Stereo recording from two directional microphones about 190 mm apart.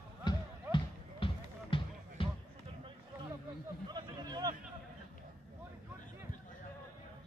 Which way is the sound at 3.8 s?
20° right (ahead or behind).